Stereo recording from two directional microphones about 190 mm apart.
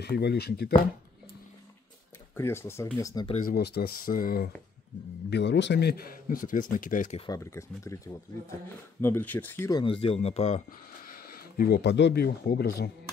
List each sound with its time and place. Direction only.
0.0 s speech: 60° left (ahead or behind)
2.3 s speech: 15° left (ahead or behind)
3.4 s a man's voice: 55° left (ahead or behind)
5.3 s a man's voice: 65° left (ahead or behind); by 7.2 s 45° left (ahead or behind)
7.2 s speech: 20° left (ahead or behind); by 11.1 s 35° left (ahead or behind)
11.1 s speech: 50° left (ahead or behind)